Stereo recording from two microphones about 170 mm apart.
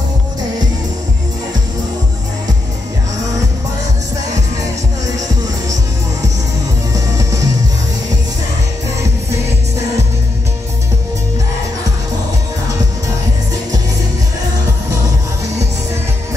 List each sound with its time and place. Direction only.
6.9 s music: 20° right (ahead or behind)